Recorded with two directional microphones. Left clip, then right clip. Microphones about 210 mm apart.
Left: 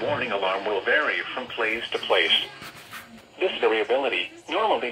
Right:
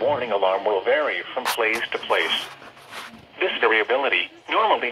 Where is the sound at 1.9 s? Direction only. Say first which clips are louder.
Left 1 dB; 15° right (ahead or behind).